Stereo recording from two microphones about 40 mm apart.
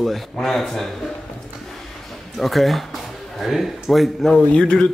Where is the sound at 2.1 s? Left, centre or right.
Centre.